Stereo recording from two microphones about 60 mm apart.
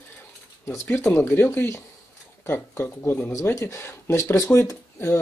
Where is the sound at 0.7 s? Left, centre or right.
Left.